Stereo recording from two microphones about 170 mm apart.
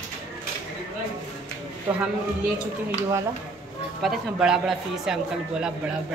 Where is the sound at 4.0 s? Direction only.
5° right (ahead or behind).